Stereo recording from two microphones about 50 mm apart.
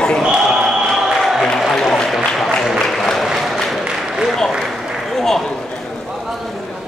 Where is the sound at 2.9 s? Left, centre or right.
Centre.